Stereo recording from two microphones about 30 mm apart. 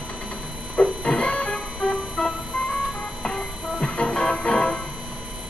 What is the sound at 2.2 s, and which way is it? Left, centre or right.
Music, centre.